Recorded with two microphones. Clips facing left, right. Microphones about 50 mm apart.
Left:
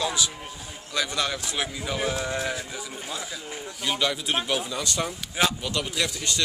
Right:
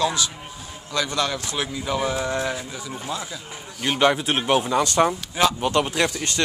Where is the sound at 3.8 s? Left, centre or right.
Right.